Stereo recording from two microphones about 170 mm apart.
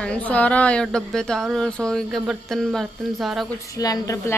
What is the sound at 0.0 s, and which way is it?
Speech, 10° left (ahead or behind).